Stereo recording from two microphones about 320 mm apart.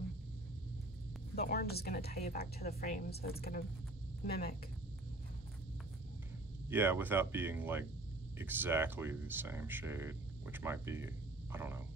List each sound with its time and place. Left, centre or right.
1.3 s a woman's voice: left
6.7 s speech: centre